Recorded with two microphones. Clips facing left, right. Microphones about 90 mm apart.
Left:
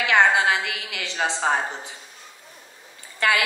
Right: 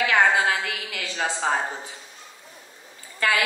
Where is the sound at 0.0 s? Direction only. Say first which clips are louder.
Left 1 dB; 20° left (ahead or behind).